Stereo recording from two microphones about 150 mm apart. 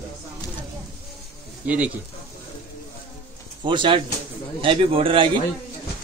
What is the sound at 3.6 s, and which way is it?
Speech, 35° right (ahead or behind).